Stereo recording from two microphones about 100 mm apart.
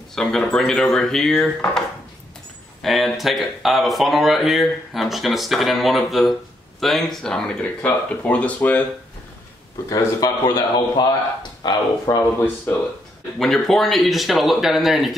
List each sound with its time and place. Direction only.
0.1 s speech: 5° left (ahead or behind)
2.8 s speech: centre (ahead or behind); by 8.8 s 15° left (ahead or behind)
9.8 s a man's voice: 35° left (ahead or behind)
13.4 s speech: 5° left (ahead or behind)